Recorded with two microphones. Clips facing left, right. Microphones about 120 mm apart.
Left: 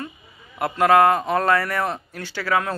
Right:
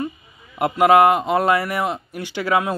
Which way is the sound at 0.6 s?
20° right (ahead or behind).